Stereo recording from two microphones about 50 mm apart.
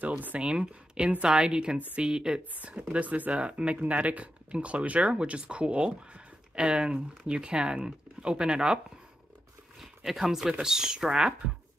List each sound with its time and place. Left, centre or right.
0.4 s speech: centre
2.9 s speech: right
9.8 s a sound: centre
10.6 s speech: centre